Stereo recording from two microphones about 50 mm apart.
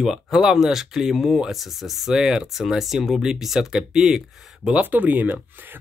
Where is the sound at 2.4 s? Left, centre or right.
Centre.